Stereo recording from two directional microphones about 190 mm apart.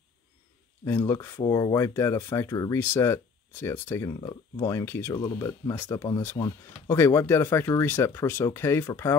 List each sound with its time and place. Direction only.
0.8 s speech: 15° left (ahead or behind)